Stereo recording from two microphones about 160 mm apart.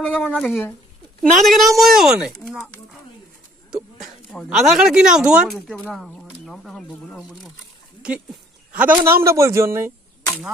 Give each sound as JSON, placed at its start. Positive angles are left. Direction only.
{"t": 0.0, "sound": "speech", "side_deg": 5}
{"t": 3.7, "sound": "speech", "side_deg": 0}